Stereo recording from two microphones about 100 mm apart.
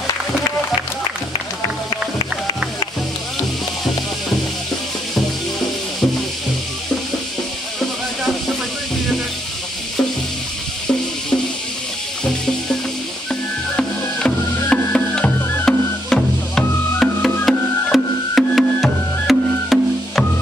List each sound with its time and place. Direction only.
1.9 s music: 50° left (ahead or behind)
13.3 s music: 10° left (ahead or behind)